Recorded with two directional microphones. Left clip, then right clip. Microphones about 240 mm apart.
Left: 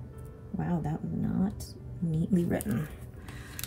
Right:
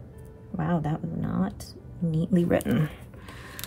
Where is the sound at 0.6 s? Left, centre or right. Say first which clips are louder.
Right 6 dB; right.